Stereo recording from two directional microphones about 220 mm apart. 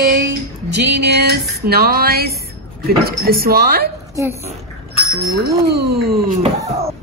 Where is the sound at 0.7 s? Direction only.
50° right (ahead or behind).